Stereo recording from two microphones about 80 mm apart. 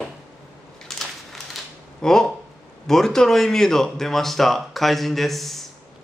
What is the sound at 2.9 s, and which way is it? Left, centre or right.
Speech, centre.